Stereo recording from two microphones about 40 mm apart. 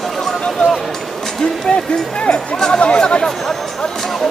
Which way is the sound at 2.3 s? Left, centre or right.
Centre.